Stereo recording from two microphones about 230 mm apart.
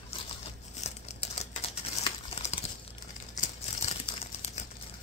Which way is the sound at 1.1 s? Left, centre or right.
Left.